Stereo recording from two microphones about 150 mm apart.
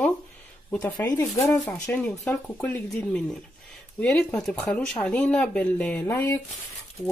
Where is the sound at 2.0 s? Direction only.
5° left (ahead or behind).